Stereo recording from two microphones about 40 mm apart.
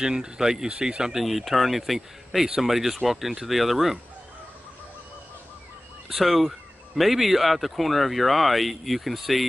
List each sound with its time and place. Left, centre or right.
0.0 s speech: centre
1.2 s speech: centre
6.0 s speech: centre